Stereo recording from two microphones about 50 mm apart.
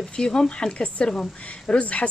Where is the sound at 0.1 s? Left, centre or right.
Centre.